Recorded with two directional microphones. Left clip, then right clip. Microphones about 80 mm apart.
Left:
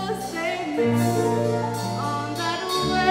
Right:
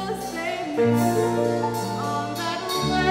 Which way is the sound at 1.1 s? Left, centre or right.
Left.